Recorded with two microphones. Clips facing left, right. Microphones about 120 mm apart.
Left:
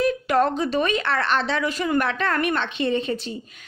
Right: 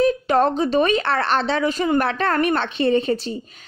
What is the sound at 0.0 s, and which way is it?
A woman's voice, 30° right (ahead or behind).